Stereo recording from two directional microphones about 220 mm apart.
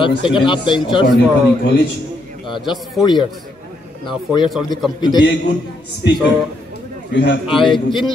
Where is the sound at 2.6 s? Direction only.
Centre (ahead or behind).